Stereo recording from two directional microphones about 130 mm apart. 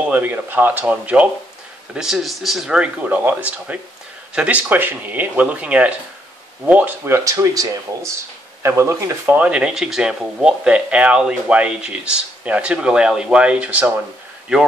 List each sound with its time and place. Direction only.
0.0 s speech: 15° right (ahead or behind)
7.2 s speech: 25° right (ahead or behind)